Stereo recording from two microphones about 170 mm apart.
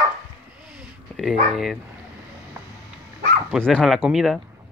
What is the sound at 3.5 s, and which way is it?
Speech, centre (ahead or behind).